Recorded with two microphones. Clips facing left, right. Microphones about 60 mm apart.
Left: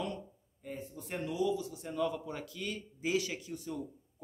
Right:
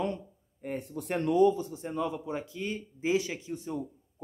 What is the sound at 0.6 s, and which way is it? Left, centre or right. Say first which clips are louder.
A man's voice: right 7 dB; right.